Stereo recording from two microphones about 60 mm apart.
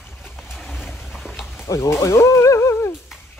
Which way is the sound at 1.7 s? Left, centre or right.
Left.